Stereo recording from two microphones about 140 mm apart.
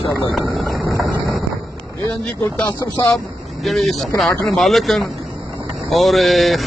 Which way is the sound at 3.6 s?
Centre (ahead or behind).